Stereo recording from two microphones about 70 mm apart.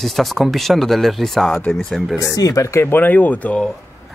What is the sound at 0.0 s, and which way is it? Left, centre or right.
Speech, centre.